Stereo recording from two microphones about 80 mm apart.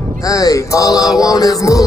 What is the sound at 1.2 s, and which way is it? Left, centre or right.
Music, left.